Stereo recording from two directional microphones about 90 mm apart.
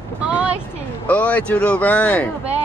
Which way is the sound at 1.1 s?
15° left (ahead or behind).